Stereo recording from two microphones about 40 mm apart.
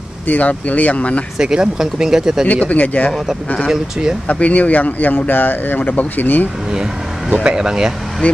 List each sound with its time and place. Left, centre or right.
0.3 s speech: left
1.4 s speech: centre
2.4 s speech: left
3.6 s speech: centre
4.3 s speech: left
7.2 s speech: right
7.5 s speech: centre